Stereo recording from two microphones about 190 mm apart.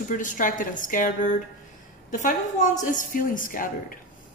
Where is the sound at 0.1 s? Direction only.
45° left (ahead or behind).